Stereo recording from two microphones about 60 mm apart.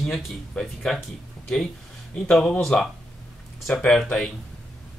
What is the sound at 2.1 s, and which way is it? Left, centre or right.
Speech, centre.